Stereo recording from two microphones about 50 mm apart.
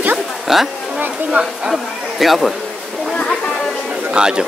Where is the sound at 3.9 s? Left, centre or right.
Centre.